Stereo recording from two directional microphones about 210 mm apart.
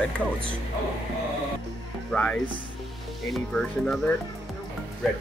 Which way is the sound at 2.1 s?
5° left (ahead or behind).